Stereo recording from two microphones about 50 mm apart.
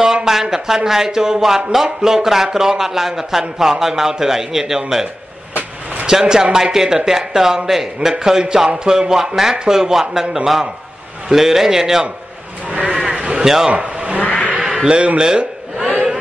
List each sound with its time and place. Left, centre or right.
0.0 s speech: centre
5.5 s vehicle: right
6.0 s speech: centre
12.6 s sheep: right
13.4 s speech: centre
13.7 s speech: right
14.2 s a sound: left
14.8 s a man's voice: right